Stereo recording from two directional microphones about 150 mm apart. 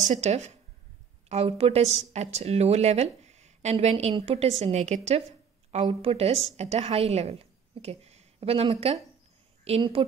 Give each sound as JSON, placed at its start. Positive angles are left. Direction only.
{"t": 0.0, "sound": "a woman's voice", "side_deg": -50}